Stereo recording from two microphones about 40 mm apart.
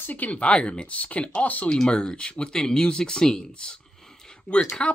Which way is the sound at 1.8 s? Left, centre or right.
Left.